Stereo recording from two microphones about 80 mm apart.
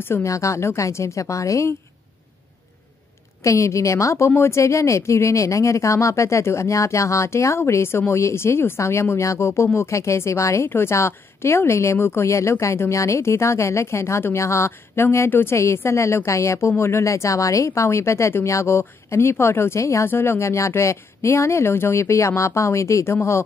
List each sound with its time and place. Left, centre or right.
0.0 s speech: left
3.4 s speech: left